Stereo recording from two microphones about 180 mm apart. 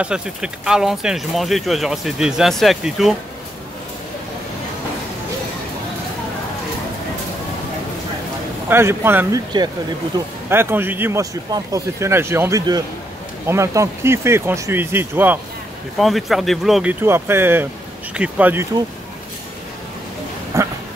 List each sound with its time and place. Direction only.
0.0 s speech: 5° right (ahead or behind)
8.6 s a man's voice: 15° right (ahead or behind)
16.0 s speech: centre (ahead or behind)
17.0 s a man's voice: 15° right (ahead or behind)
20.5 s dog: 15° right (ahead or behind)